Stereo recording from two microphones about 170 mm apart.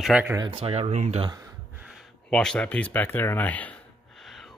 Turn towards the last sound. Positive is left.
turn(degrees=0)  # may be behind; listen again after turning